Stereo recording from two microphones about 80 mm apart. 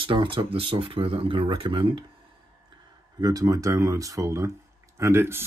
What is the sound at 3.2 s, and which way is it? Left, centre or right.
Speech, right.